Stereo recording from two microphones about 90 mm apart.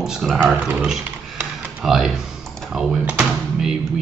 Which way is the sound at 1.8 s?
5° right (ahead or behind).